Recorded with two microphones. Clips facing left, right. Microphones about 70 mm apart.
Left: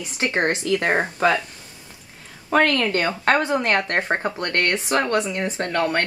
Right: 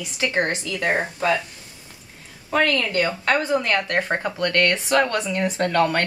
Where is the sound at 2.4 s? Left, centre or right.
Left.